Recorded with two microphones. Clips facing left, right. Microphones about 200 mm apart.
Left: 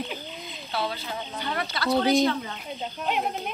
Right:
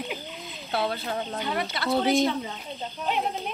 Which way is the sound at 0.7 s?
55° right (ahead or behind).